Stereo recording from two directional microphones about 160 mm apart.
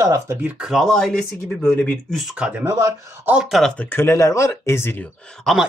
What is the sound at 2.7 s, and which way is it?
Speech, 20° right (ahead or behind).